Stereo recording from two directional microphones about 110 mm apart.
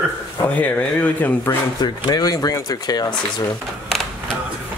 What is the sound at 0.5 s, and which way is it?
Speech, 15° left (ahead or behind).